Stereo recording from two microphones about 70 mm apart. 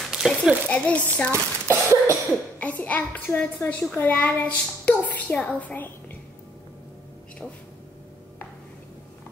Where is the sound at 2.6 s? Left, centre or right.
Left.